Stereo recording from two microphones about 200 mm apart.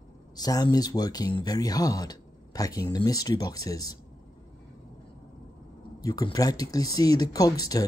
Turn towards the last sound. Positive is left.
turn(degrees=20)  # may be behind; listen again after turning